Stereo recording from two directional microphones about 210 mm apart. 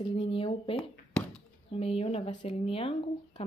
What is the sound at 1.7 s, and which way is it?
A woman's voice, 25° left (ahead or behind).